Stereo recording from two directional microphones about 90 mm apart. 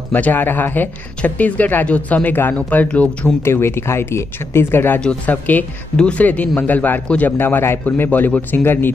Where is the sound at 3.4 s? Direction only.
30° left (ahead or behind).